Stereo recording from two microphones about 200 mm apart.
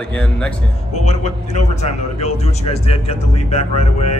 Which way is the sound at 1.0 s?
35° left (ahead or behind).